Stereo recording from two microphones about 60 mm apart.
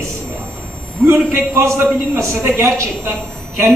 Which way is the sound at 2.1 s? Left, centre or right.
Right.